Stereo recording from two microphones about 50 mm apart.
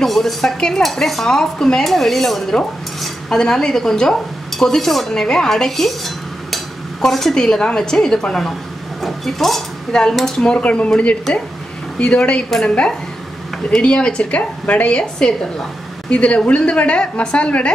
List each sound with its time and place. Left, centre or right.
0.0 s speech: centre
10.5 s a woman's voice: left
12.4 s speech: centre
13.7 s a woman's voice: centre